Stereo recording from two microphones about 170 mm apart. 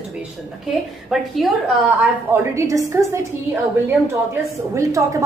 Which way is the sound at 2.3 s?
15° right (ahead or behind).